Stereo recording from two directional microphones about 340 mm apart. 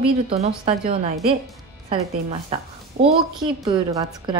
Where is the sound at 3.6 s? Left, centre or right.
Centre.